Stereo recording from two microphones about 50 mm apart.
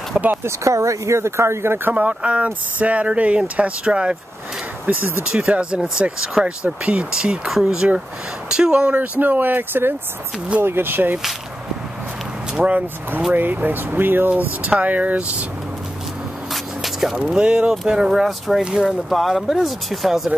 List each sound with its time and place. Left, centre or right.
0.4 s speech: right
1.9 s speech: right
4.9 s speech: right
5.3 s speech: centre
9.2 s speech: right
12.5 s speech: right
13.3 s speech: right
14.6 s speech: right
16.8 s a sound: centre
17.3 s speech: centre
18.9 s speech: centre